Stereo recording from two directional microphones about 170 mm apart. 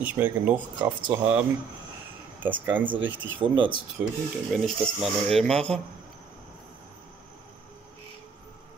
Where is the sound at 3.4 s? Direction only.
30° right (ahead or behind).